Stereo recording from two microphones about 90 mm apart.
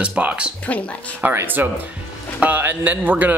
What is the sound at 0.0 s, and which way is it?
A man's voice, 15° right (ahead or behind).